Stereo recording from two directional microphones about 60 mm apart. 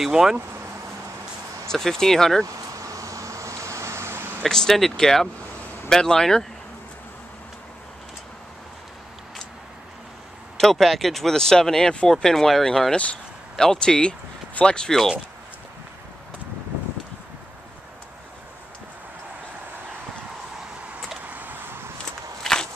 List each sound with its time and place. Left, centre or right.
0.0 s speech: centre
1.7 s speech: centre
2.4 s a sound: right
4.4 s speech: centre
10.6 s speech: centre
12.9 s speech: centre
21.3 s vehicle: right
22.4 s walk: centre